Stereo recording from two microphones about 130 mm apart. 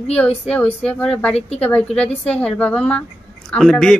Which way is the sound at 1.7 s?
10° left (ahead or behind).